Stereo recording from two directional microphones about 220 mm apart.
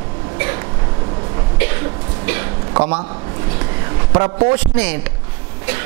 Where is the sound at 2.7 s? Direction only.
25° right (ahead or behind).